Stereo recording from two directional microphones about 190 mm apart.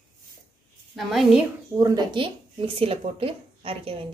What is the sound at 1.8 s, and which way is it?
Speech, 25° right (ahead or behind).